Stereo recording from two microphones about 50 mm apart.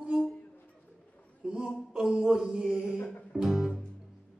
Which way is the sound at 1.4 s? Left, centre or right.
Centre.